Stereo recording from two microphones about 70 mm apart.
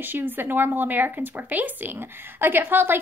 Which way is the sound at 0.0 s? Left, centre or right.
Right.